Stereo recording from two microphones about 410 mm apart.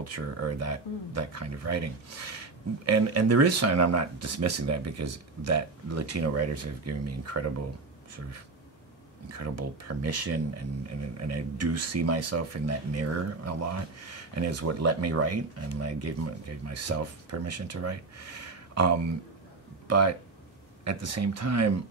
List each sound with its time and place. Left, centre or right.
0.0 s speech: right
9.4 s speech: right
19.9 s speech: right